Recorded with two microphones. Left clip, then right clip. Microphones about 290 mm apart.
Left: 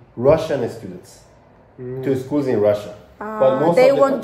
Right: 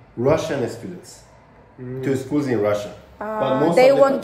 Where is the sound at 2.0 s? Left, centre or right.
Left.